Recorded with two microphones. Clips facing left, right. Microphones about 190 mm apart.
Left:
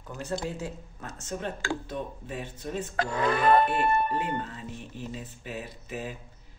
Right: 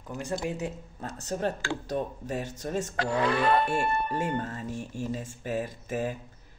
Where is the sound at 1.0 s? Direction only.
35° right (ahead or behind).